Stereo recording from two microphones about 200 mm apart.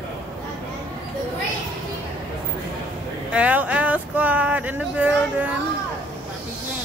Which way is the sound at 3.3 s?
5° right (ahead or behind).